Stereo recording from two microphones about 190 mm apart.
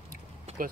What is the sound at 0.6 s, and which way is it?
Speech, 45° right (ahead or behind).